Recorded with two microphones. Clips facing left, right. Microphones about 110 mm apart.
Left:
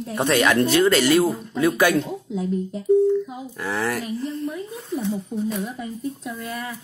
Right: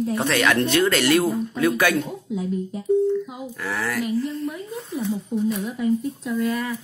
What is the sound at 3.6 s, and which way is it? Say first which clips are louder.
Speech: left 1 dB; 25° left (ahead or behind).